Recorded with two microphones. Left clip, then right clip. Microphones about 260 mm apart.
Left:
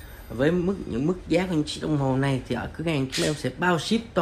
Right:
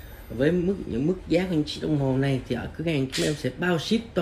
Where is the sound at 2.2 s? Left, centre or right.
Centre.